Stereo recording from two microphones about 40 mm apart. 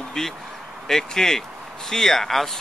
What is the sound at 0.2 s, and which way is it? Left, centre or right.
Speech, centre.